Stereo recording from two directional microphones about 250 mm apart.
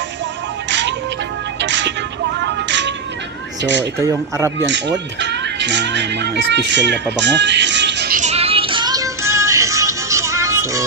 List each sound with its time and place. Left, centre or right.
0.7 s music: right
4.0 s speech: centre
4.6 s speech: right
8.2 s music: right